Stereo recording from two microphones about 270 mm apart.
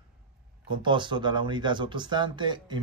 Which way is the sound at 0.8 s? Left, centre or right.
Centre.